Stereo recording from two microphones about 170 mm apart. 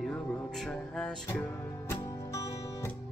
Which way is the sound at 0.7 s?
5° left (ahead or behind).